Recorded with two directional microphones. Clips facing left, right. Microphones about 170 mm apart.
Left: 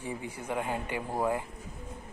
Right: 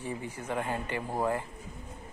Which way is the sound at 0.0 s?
15° left (ahead or behind).